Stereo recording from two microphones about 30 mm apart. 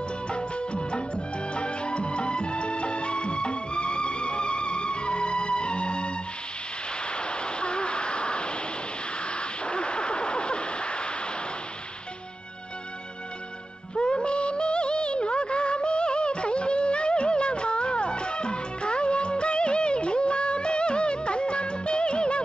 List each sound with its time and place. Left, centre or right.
0.3 s music: left
7.1 s vehicle: left
13.9 s music: left